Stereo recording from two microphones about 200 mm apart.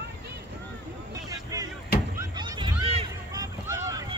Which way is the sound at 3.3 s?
15° right (ahead or behind).